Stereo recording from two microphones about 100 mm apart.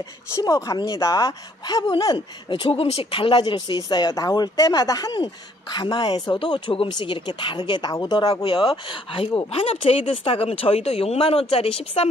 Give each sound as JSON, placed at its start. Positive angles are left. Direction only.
{"t": 0.4, "sound": "speech", "side_deg": 35}
{"t": 2.1, "sound": "speech", "side_deg": 60}
{"t": 3.4, "sound": "speech", "side_deg": 45}
{"t": 8.5, "sound": "speech", "side_deg": 60}
{"t": 9.5, "sound": "speech", "side_deg": 80}